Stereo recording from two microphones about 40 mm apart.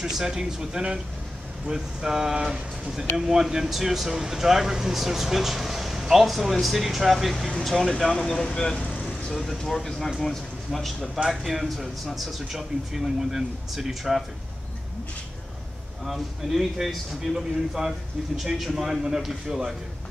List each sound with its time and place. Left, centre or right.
0.0 s speech: centre
8.1 s speech: centre
16.0 s speech: centre